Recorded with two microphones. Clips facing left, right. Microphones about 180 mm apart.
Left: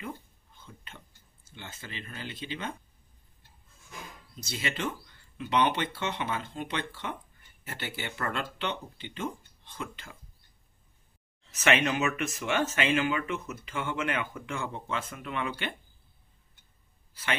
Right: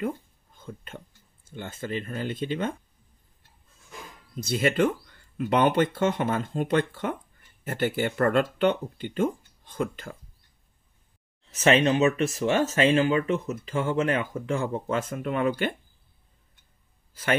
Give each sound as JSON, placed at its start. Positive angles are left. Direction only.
{"t": 0.6, "sound": "speech", "side_deg": -50}
{"t": 4.4, "sound": "speech", "side_deg": -50}
{"t": 11.6, "sound": "speech", "side_deg": -35}
{"t": 17.1, "sound": "a man's voice", "side_deg": -45}